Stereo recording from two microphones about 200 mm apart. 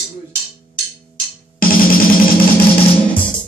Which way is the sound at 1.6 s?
45° left (ahead or behind).